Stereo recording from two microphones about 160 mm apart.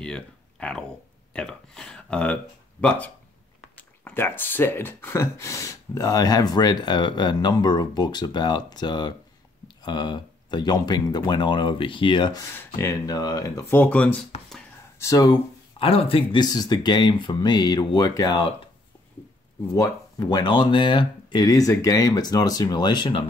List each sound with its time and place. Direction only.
0.0 s a sound: 5° left (ahead or behind)
1.3 s speech: 5° left (ahead or behind)
4.0 s speech: 10° left (ahead or behind)
12.5 s speech: 15° left (ahead or behind)
15.0 s speech: 20° left (ahead or behind)
15.8 s speech: 35° left (ahead or behind)
19.7 s speech: 20° left (ahead or behind)